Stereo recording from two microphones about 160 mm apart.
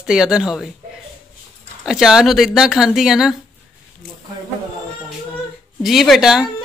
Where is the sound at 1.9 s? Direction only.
5° right (ahead or behind).